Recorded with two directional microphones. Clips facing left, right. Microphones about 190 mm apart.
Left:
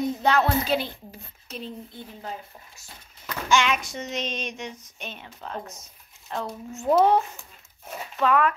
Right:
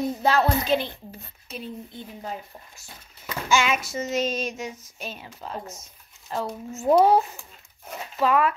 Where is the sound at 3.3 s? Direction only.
5° right (ahead or behind).